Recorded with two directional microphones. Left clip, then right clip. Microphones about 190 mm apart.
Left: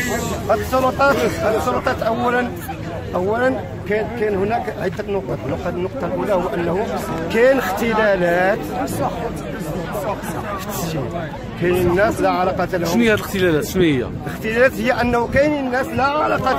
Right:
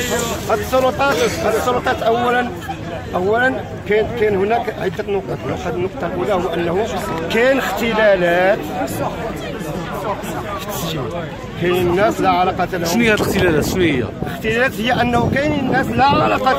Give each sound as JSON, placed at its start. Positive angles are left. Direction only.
{"t": 0.5, "sound": "speech", "side_deg": -5}
{"t": 7.3, "sound": "speech", "side_deg": -5}
{"t": 11.6, "sound": "speech", "side_deg": 0}